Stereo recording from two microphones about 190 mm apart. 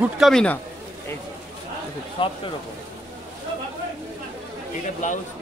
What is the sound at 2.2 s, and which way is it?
Speech, 25° left (ahead or behind).